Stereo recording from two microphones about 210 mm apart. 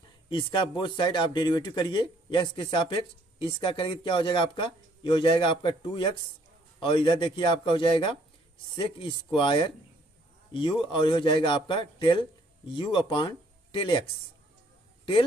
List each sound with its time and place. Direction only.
0.3 s speech: 25° left (ahead or behind)